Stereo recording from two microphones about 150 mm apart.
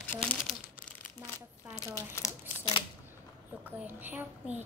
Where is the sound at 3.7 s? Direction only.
10° right (ahead or behind).